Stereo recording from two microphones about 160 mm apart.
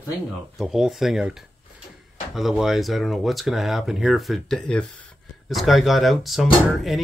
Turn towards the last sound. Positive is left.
turn(degrees=0)  # may be behind; listen again after turning